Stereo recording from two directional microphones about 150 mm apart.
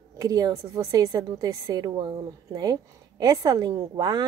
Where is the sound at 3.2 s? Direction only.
25° right (ahead or behind).